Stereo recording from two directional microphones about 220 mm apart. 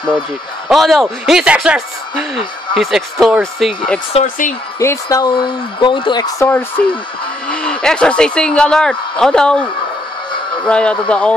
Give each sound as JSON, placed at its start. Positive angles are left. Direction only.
{"t": 0.7, "sound": "speech", "side_deg": 0}
{"t": 4.1, "sound": "speech", "side_deg": 35}
{"t": 4.7, "sound": "speech", "side_deg": 15}